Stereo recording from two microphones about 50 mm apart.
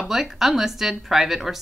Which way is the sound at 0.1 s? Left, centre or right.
Centre.